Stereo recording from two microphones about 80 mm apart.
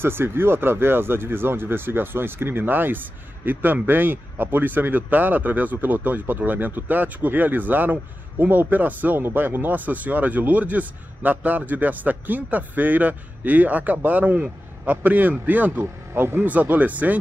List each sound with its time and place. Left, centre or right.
0.0 s speech: right
15.8 s speech: right